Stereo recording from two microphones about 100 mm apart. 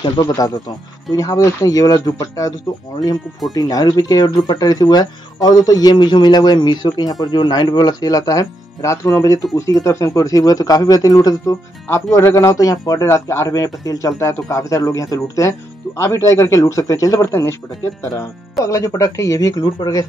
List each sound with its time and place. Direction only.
0.2 s speech: 40° left (ahead or behind)
3.5 s speech: 40° left (ahead or behind)